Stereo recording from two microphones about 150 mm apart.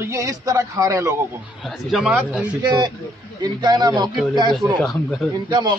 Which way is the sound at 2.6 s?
30° right (ahead or behind).